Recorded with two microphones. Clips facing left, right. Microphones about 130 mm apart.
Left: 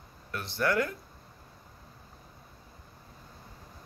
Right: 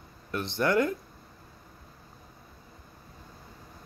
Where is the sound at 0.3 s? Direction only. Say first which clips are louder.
Right 3 dB; 20° right (ahead or behind).